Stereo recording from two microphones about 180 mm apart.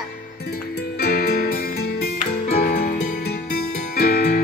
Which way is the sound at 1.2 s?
55° left (ahead or behind).